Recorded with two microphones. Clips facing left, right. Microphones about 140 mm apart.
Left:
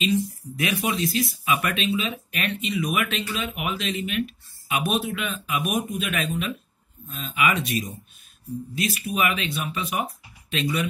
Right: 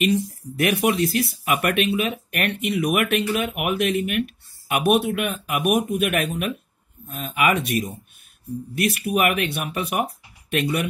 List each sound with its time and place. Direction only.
0.0 s speech: 65° right (ahead or behind)